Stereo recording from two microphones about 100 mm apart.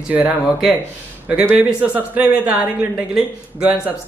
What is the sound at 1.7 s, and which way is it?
Speech, 15° right (ahead or behind).